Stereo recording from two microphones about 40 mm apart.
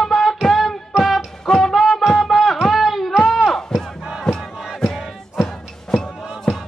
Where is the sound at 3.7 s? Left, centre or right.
Centre.